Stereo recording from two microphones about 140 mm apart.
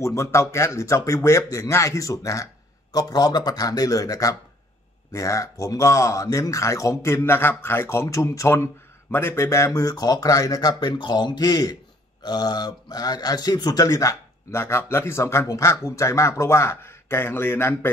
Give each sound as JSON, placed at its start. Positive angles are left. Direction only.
{"t": 0.0, "sound": "speech", "side_deg": 20}